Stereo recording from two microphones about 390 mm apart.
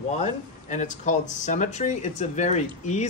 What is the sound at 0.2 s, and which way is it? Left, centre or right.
Speech, centre.